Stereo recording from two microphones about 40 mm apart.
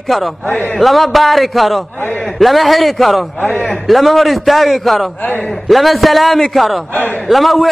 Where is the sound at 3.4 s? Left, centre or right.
Left.